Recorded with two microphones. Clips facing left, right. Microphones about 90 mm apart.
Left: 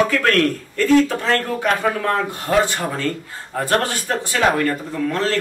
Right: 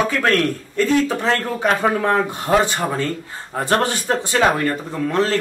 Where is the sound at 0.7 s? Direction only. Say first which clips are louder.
Left 2 dB; 20° right (ahead or behind).